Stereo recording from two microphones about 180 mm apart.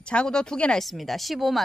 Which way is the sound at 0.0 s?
5° left (ahead or behind).